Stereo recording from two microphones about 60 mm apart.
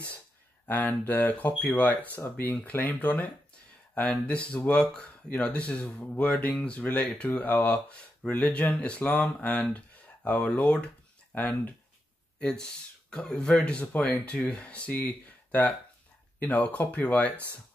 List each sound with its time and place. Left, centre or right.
0.7 s speech: left
4.3 s speech: left
12.4 s speech: centre